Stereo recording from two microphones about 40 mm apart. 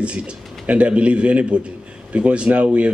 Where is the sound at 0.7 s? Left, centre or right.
Right.